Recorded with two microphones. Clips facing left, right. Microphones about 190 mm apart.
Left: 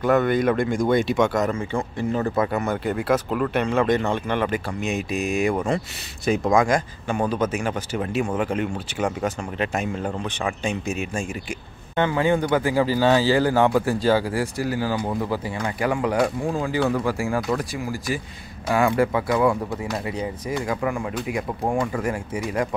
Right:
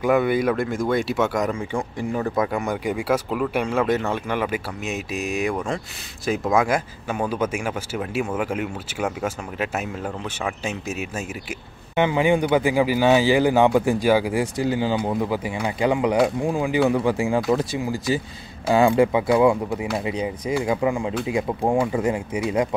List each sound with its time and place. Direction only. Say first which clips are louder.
0.0 s speech: even; 10° right (ahead or behind)
11.9 s speech: right 2 dB; 15° right (ahead or behind)